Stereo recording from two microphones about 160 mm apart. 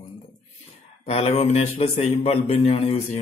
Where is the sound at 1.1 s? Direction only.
40° left (ahead or behind).